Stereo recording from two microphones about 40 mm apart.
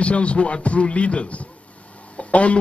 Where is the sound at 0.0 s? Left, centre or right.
Left.